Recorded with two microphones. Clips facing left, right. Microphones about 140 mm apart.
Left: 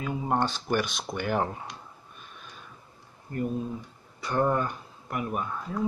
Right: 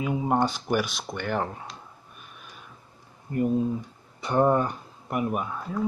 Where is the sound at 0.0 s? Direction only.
15° right (ahead or behind); by 1.8 s 5° left (ahead or behind).